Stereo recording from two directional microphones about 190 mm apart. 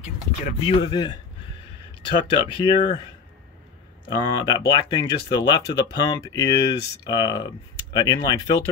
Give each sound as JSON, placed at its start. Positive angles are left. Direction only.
{"t": 0.0, "sound": "speech", "side_deg": 35}
{"t": 4.1, "sound": "speech", "side_deg": 25}